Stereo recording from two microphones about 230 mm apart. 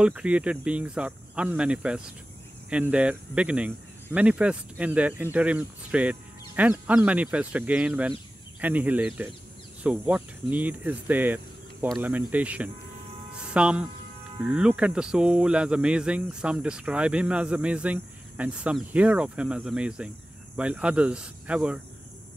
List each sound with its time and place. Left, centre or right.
0.0 s a man's voice: centre